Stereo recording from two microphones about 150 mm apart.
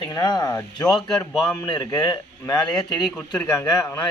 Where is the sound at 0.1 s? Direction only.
25° left (ahead or behind).